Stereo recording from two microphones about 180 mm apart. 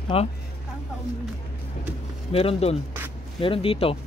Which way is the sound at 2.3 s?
35° left (ahead or behind).